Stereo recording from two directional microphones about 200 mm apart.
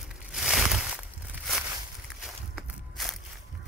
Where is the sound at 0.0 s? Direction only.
Centre (ahead or behind).